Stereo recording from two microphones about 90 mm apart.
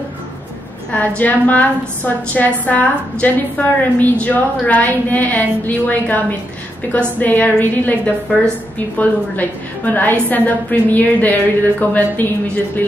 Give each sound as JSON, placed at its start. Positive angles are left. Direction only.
{"t": 0.9, "sound": "a woman's voice", "side_deg": 15}